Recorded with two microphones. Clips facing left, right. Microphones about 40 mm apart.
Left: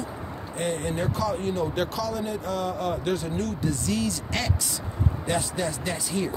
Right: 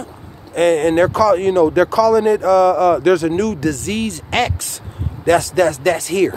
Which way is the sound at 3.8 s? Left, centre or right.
Right.